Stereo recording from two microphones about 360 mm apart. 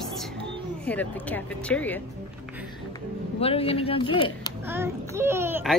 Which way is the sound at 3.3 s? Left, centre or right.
Centre.